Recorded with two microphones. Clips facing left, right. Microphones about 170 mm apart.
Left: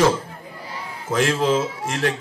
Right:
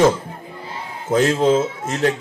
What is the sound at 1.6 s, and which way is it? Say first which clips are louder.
Speech: right 3 dB; 25° right (ahead or behind).